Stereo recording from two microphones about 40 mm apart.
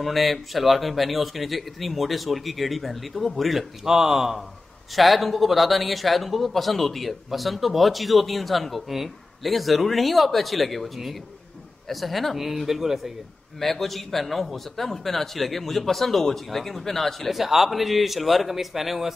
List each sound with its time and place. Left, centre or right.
0.0 s speech: centre
13.6 s speech: centre
17.3 s speech: centre